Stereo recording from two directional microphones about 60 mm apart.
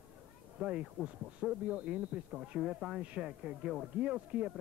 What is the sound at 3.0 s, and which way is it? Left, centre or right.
Speech, centre.